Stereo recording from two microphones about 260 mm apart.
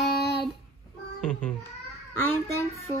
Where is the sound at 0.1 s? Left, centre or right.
Left.